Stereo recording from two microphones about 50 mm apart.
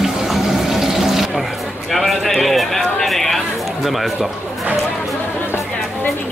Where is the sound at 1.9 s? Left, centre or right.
Centre.